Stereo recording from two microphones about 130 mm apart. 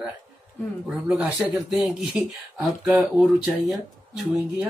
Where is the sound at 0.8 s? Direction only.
10° right (ahead or behind).